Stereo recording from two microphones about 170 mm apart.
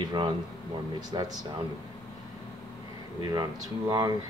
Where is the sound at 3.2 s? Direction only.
25° right (ahead or behind).